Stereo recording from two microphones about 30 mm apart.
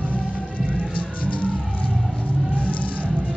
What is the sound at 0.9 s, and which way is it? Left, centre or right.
Music, left.